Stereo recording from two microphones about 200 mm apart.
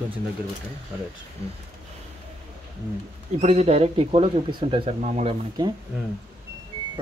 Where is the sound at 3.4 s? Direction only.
30° right (ahead or behind).